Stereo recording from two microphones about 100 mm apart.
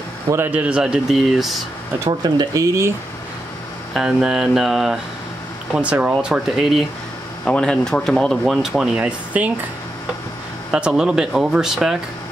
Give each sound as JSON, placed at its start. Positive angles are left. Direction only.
{"t": 0.5, "sound": "speech", "side_deg": -10}
{"t": 2.0, "sound": "speech", "side_deg": -40}
{"t": 3.9, "sound": "speech", "side_deg": -5}
{"t": 5.8, "sound": "speech", "side_deg": -15}
{"t": 7.4, "sound": "speech", "side_deg": 10}
{"t": 10.7, "sound": "speech", "side_deg": -10}